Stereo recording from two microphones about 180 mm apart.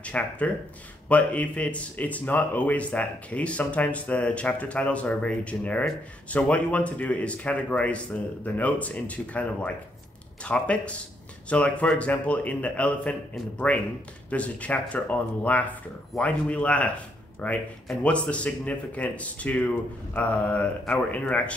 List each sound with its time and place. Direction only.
0.0 s speech: 10° left (ahead or behind)